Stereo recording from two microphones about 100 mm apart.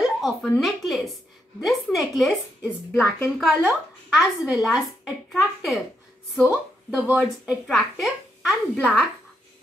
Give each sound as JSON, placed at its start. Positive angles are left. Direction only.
{"t": 0.0, "sound": "a sound", "side_deg": -5}
{"t": 0.6, "sound": "a woman's voice", "side_deg": 0}
{"t": 2.9, "sound": "a woman's voice", "side_deg": 25}
{"t": 3.3, "sound": "a woman's voice", "side_deg": -5}
{"t": 6.4, "sound": "speech", "side_deg": -15}